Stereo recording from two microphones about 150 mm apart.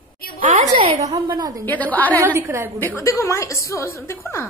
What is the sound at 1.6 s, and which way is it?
Speech, 10° left (ahead or behind).